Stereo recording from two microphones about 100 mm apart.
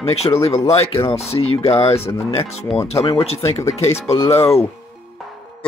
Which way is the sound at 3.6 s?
30° left (ahead or behind).